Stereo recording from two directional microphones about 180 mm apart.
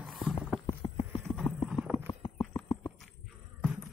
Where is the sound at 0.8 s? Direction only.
35° left (ahead or behind).